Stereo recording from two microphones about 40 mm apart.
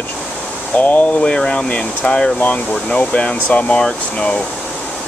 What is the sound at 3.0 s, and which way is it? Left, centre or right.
Speech, left.